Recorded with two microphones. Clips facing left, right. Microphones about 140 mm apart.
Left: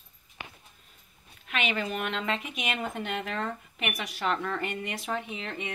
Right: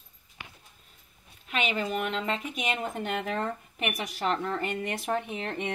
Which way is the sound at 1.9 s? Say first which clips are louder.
Right 1 dB; 35° right (ahead or behind).